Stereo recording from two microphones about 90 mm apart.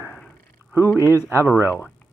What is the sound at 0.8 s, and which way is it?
Speech, 30° left (ahead or behind).